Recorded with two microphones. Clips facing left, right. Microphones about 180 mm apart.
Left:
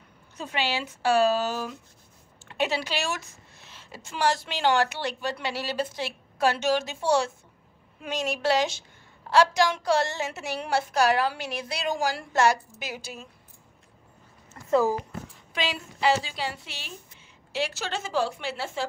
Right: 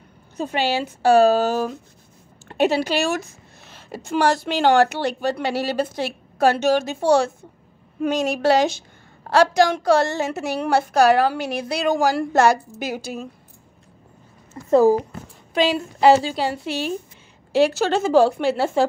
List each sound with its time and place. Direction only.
0.4 s a woman's voice: 45° right (ahead or behind)
14.8 s a woman's voice: 40° right (ahead or behind)